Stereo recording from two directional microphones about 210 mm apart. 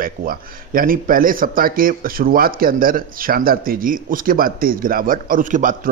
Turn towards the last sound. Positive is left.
turn(degrees=-40)  # may be behind; listen again after turning